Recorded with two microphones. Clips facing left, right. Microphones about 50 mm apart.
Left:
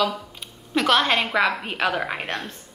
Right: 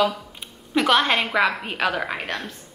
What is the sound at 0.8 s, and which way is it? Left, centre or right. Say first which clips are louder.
A woman's voice: right 1 dB; centre.